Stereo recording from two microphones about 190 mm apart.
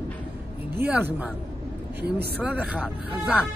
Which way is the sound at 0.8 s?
10° right (ahead or behind).